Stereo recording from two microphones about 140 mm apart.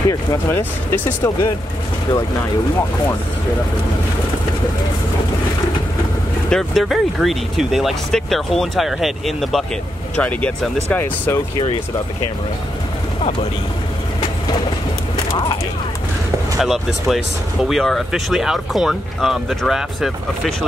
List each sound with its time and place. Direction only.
0.1 s speech: 25° left (ahead or behind)
0.6 s speech: 15° left (ahead or behind)
6.5 s speech: centre (ahead or behind)
16.5 s speech: centre (ahead or behind)